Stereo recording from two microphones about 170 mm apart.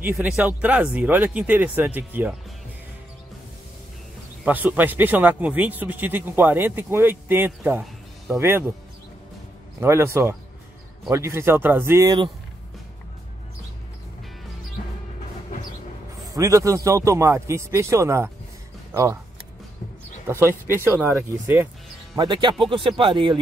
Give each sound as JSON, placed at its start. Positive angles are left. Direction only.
{"t": 0.1, "sound": "speech", "side_deg": -10}
{"t": 4.5, "sound": "speech", "side_deg": -10}
{"t": 9.8, "sound": "speech", "side_deg": -15}
{"t": 16.3, "sound": "speech", "side_deg": -20}
{"t": 20.2, "sound": "speech", "side_deg": -15}
{"t": 22.1, "sound": "speech", "side_deg": -25}